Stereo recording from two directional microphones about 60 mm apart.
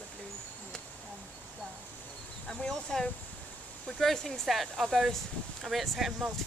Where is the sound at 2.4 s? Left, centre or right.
Centre.